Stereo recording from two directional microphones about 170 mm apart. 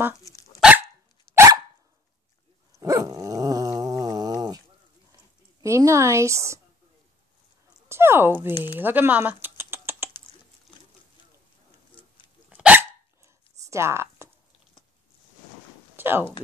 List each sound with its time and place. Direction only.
0.2 s dog: 20° left (ahead or behind)
0.6 s dog: 5° right (ahead or behind)
2.8 s dog: 20° right (ahead or behind)
5.6 s a woman's voice: 15° right (ahead or behind)
7.9 s speech: 15° right (ahead or behind)
12.4 s hiccup: 10° right (ahead or behind)
16.0 s a sound: 10° right (ahead or behind)